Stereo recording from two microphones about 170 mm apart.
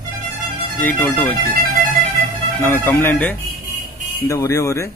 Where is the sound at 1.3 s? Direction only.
60° right (ahead or behind).